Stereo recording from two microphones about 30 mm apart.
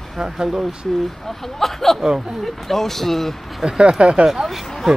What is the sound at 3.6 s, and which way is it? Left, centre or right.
Speech, right.